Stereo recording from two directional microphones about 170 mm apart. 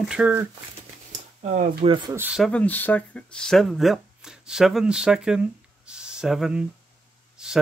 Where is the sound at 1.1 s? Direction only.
45° right (ahead or behind).